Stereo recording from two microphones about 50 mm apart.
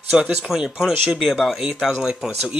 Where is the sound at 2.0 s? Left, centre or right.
Centre.